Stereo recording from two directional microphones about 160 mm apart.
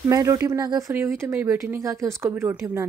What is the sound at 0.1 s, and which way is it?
Speech, 20° right (ahead or behind).